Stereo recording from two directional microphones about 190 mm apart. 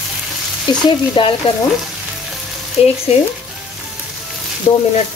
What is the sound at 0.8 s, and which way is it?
Frying, 25° left (ahead or behind).